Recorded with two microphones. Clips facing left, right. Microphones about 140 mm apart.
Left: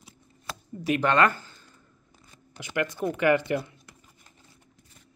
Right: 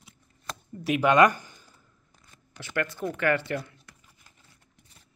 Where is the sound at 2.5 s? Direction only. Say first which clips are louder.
Left 2 dB; 15° left (ahead or behind).